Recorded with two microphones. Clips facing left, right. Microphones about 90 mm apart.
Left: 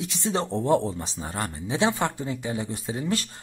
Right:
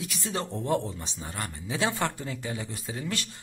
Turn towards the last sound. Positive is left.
turn(degrees=30)  # may be behind; listen again after turning